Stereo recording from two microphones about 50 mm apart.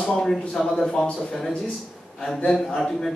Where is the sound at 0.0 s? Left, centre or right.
Centre.